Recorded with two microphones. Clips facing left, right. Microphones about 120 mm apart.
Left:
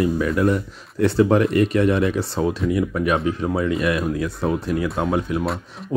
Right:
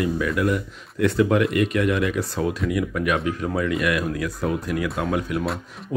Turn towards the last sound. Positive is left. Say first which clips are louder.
# left 3 dB
turn(degrees=25)  # may be behind; listen again after turning